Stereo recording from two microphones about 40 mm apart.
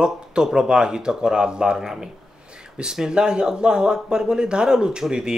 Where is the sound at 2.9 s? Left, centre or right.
Centre.